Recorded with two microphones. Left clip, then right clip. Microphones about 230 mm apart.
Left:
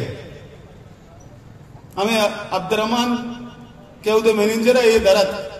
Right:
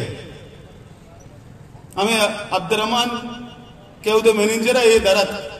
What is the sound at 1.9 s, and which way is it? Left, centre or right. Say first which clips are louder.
A man's voice: even; right.